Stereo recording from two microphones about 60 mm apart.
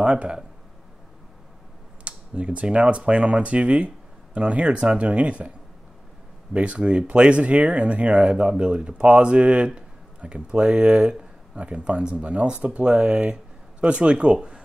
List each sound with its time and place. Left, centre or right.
0.0 s speech: centre
2.0 s speech: centre
6.5 s speech: right